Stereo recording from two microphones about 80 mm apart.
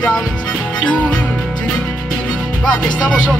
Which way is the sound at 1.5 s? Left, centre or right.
Centre.